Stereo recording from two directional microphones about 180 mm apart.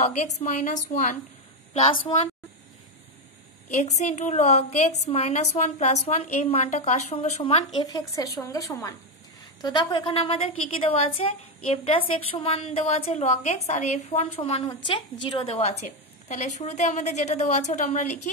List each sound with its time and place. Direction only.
0.0 s a woman's voice: 40° left (ahead or behind)
3.7 s a woman's voice: 40° left (ahead or behind)
7.8 s a woman's voice: 20° left (ahead or behind); by 18.3 s 40° left (ahead or behind)